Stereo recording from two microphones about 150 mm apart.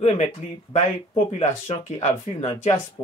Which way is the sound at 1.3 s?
45° left (ahead or behind).